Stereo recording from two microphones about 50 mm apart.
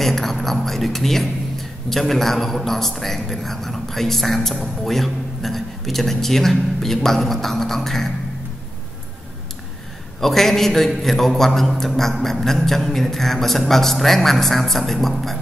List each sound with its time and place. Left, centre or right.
0.0 s a sound: centre
0.7 s speech: centre
10.2 s speech: centre